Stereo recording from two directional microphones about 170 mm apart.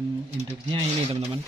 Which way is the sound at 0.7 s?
35° right (ahead or behind).